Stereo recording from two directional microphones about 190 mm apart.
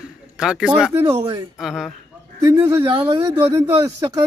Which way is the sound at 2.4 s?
20° right (ahead or behind).